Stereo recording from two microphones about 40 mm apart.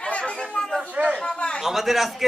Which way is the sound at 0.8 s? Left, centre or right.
Right.